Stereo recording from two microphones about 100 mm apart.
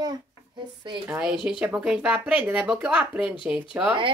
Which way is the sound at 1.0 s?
10° right (ahead or behind).